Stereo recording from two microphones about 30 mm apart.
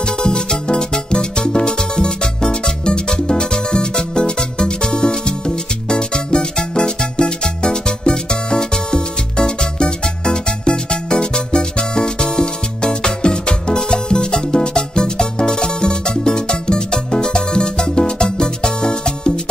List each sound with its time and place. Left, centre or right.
0.2 s music: left